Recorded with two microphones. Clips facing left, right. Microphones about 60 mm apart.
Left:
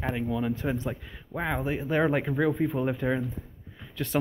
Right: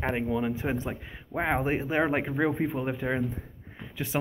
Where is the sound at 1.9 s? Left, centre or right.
Centre.